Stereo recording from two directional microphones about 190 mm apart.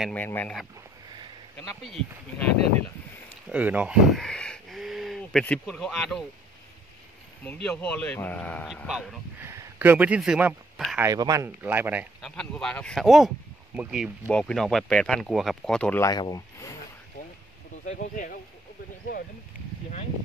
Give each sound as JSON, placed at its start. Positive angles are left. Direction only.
{"t": 0.1, "sound": "a man's voice", "side_deg": 10}
{"t": 1.8, "sound": "speech", "side_deg": 0}
{"t": 3.4, "sound": "a sound", "side_deg": -5}
{"t": 7.7, "sound": "a man's voice", "side_deg": 5}
{"t": 8.8, "sound": "speech", "side_deg": -5}
{"t": 11.1, "sound": "speech", "side_deg": -15}
{"t": 12.3, "sound": "speech", "side_deg": 5}
{"t": 16.1, "sound": "speech", "side_deg": 20}
{"t": 17.8, "sound": "speech", "side_deg": 45}